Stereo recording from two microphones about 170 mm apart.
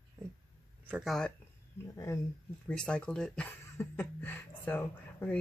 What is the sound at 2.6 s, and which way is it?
Speech, 5° left (ahead or behind).